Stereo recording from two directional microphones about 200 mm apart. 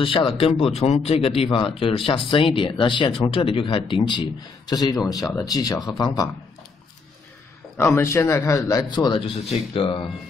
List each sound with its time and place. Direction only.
0.0 s speech: 25° left (ahead or behind)
7.7 s a man's voice: 15° left (ahead or behind)